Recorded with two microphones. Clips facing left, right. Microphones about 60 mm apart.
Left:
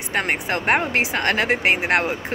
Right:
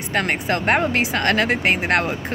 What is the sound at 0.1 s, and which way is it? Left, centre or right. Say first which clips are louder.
Speech: right 1 dB; centre.